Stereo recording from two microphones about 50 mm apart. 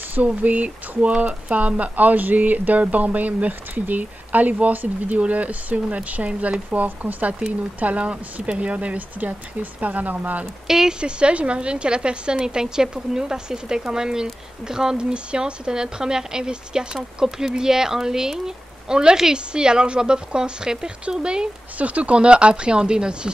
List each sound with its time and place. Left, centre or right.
0.1 s speech: right
10.7 s speech: centre
11.0 s speech: centre
21.7 s speech: right